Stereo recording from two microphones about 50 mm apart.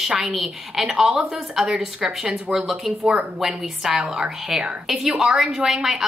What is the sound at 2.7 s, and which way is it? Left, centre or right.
A woman's voice, centre.